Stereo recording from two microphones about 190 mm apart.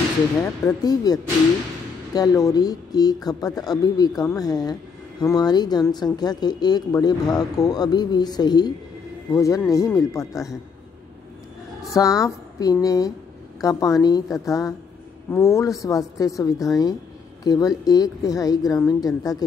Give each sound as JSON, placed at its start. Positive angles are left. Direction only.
{"t": 0.4, "sound": "a woman's voice", "side_deg": 15}
{"t": 11.9, "sound": "a woman's voice", "side_deg": 15}